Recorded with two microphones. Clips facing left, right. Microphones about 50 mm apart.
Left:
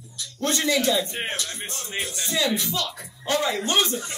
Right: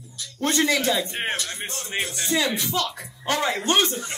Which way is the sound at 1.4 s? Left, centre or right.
Right.